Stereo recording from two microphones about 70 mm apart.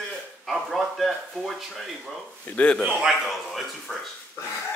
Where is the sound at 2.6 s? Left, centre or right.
Left.